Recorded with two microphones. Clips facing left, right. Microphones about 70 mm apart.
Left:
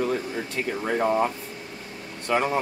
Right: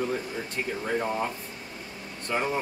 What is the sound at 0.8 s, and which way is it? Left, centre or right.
Speech, left.